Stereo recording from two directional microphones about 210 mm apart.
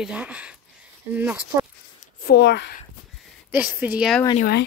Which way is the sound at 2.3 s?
55° left (ahead or behind).